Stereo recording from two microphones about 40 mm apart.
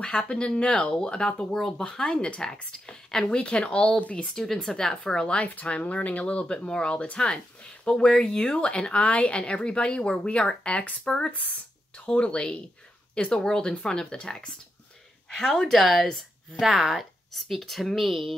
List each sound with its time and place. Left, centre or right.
0.2 s a woman's voice: left
3.3 s speech: left
4.3 s a woman's voice: centre
5.4 s a woman's voice: left; by 16.6 s centre
16.6 s speech: centre